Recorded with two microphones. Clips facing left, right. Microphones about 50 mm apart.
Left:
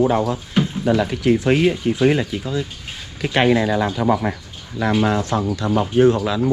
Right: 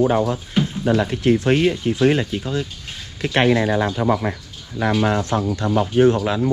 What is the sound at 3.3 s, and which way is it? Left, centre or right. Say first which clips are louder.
Speech: left 1 dB; centre.